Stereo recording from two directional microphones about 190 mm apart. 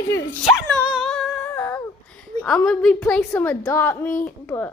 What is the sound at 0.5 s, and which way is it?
Speech, centre (ahead or behind).